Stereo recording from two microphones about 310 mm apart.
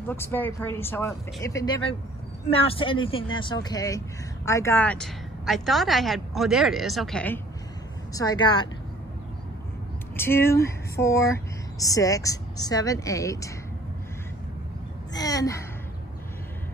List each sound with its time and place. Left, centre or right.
0.1 s a woman's voice: centre
10.1 s speech: centre
15.1 s a sound: centre